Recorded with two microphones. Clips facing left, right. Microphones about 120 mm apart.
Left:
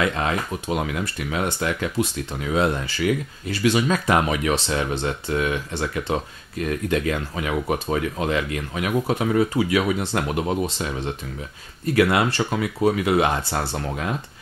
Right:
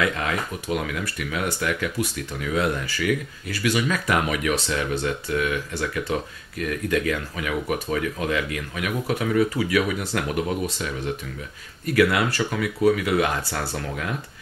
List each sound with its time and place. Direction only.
0.0 s speech: 25° left (ahead or behind)